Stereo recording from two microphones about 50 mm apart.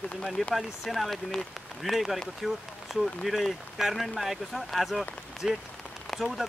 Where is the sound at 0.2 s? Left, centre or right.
Centre.